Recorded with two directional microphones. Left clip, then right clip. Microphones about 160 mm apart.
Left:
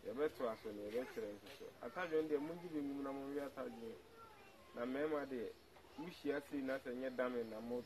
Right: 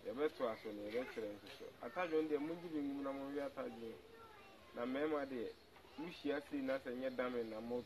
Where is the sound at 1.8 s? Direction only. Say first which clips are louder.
Right 1 dB; 20° left (ahead or behind).